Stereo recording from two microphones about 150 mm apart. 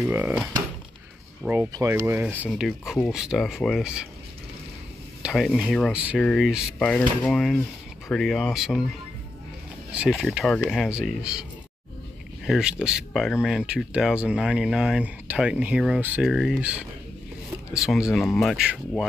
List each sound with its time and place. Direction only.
0.0 s speech: 10° right (ahead or behind)
1.7 s speech: 20° right (ahead or behind); by 4.1 s 5° right (ahead or behind)
5.2 s speech: centre (ahead or behind)
9.9 s speech: centre (ahead or behind)
12.4 s speech: 5° right (ahead or behind)